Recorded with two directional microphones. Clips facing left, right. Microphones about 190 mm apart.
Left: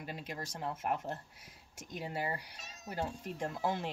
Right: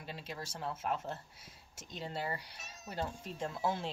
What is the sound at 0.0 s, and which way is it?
Speech, 10° left (ahead or behind).